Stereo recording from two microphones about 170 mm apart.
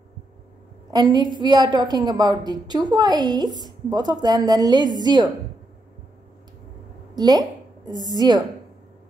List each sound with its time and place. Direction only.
0.9 s a woman's voice: 25° right (ahead or behind)
7.2 s a sound: 25° right (ahead or behind)
8.1 s a woman's voice: 25° right (ahead or behind)